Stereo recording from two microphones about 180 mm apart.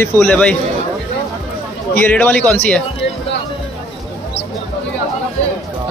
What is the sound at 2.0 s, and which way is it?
Speech, 10° left (ahead or behind).